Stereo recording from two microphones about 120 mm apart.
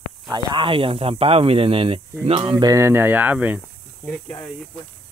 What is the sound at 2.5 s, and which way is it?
Speech, 30° right (ahead or behind).